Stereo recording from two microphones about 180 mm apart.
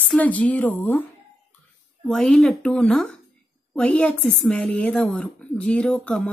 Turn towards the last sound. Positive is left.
turn(degrees=5)  # may be behind; listen again after turning